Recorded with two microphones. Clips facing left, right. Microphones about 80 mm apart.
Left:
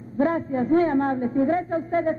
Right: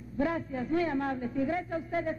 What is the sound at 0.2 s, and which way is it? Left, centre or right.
A man's voice, left.